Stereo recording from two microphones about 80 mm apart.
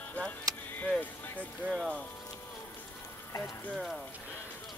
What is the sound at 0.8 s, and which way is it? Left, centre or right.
Speech, centre.